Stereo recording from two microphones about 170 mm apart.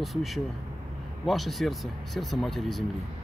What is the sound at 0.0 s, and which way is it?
Speech, centre (ahead or behind).